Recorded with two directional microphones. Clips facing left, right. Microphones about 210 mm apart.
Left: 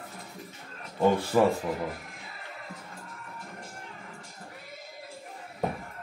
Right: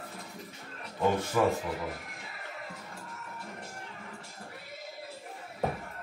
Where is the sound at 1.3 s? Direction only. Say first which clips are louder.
Left 4 dB; 30° left (ahead or behind).